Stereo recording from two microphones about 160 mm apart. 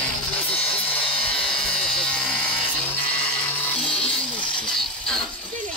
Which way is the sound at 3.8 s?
5° left (ahead or behind).